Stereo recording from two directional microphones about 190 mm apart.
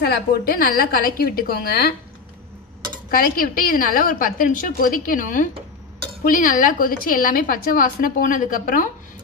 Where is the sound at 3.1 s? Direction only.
50° left (ahead or behind).